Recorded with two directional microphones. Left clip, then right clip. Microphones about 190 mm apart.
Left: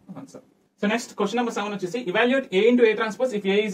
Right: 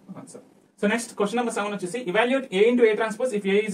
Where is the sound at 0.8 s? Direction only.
15° right (ahead or behind).